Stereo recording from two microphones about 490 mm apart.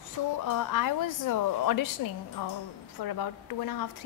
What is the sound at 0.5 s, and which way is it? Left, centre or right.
A woman's voice, left.